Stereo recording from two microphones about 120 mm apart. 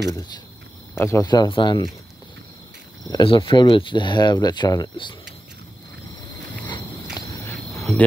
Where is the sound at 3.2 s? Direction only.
45° left (ahead or behind).